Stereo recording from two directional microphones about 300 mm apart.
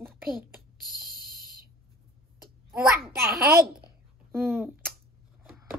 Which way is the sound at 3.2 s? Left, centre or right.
Centre.